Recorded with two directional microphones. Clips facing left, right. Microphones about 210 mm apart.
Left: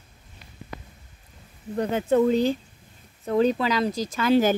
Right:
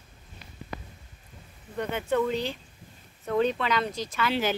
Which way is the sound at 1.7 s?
40° left (ahead or behind).